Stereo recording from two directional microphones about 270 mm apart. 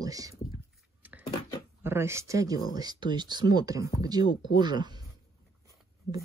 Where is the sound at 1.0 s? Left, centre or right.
Centre.